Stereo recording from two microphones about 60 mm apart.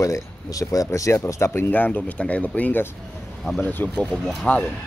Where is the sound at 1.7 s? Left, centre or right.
Left.